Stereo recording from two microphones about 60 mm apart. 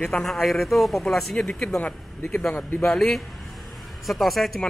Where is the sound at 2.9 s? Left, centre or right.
Centre.